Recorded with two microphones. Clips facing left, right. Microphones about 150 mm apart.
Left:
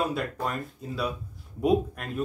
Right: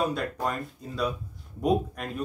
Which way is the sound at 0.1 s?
5° left (ahead or behind).